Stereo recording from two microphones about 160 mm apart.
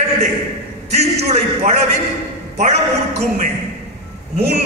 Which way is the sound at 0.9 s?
40° right (ahead or behind).